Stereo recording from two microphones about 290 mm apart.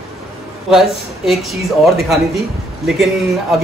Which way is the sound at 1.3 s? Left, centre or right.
Centre.